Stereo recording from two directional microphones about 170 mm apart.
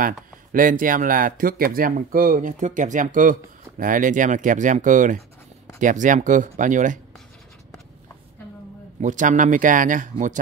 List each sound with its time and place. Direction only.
0.0 s speech: 55° right (ahead or behind)
9.0 s speech: 45° right (ahead or behind)